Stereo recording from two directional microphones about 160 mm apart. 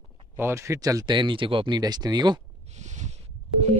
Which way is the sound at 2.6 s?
45° right (ahead or behind).